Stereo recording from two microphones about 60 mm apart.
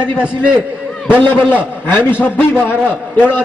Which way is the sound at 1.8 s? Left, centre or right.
Left.